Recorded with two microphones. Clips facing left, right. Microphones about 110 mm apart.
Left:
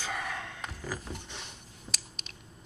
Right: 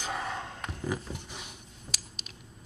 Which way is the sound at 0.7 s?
20° right (ahead or behind).